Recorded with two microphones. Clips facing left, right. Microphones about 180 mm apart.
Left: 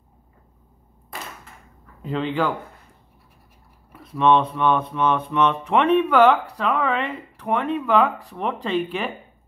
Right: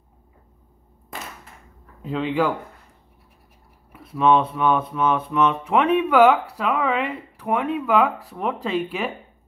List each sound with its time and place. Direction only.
2.0 s speech: centre (ahead or behind)
3.9 s music: 5° right (ahead or behind)